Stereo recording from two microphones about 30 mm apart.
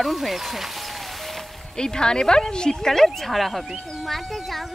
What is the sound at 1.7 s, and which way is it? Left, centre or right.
Speech, left.